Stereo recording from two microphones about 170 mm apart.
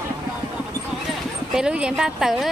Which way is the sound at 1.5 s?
5° right (ahead or behind).